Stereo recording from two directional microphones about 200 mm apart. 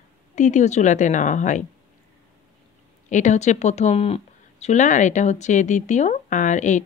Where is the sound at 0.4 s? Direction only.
35° left (ahead or behind).